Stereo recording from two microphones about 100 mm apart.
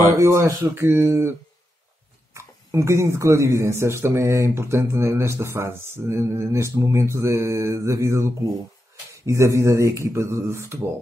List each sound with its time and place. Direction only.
0.2 s speech: 30° right (ahead or behind)
2.3 s speech: 30° right (ahead or behind)